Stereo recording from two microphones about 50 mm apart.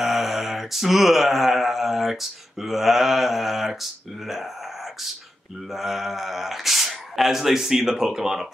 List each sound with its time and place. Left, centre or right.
0.0 s mantra: centre
2.6 s speech: centre
5.7 s speech: centre